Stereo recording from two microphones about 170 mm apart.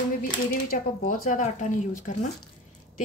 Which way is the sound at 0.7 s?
55° left (ahead or behind).